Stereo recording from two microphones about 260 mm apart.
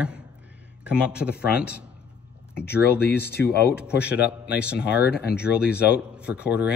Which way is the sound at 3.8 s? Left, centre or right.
Centre.